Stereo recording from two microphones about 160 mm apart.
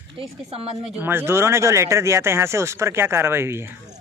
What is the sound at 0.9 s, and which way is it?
Speech, 15° right (ahead or behind).